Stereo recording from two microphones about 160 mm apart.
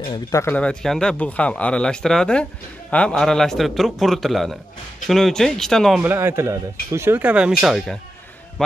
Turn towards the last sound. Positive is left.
turn(degrees=0)  # may be behind; listen again after turning